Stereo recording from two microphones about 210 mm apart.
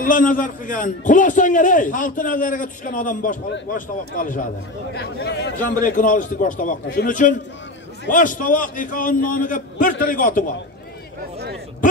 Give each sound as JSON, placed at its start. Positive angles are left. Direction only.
{"t": 0.0, "sound": "a man's voice", "side_deg": 40}
{"t": 4.9, "sound": "a man's voice", "side_deg": 50}
{"t": 5.9, "sound": "a man's voice", "side_deg": 40}